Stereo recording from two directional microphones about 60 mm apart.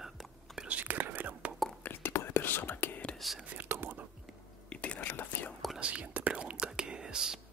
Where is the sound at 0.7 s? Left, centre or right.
Right.